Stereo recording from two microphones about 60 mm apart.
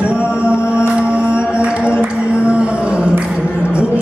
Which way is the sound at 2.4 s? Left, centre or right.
Centre.